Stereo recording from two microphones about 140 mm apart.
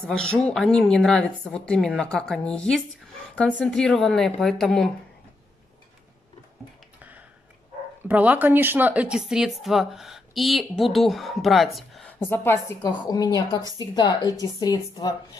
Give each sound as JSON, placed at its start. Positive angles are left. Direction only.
{"t": 0.0, "sound": "speech", "side_deg": 5}
{"t": 7.0, "sound": "a sound", "side_deg": -10}
{"t": 8.1, "sound": "speech", "side_deg": -10}
{"t": 12.1, "sound": "a woman's voice", "side_deg": 15}
{"t": 13.0, "sound": "a woman's voice", "side_deg": 30}